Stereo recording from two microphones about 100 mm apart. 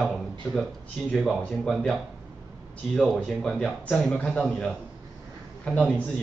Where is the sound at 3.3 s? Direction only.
5° left (ahead or behind).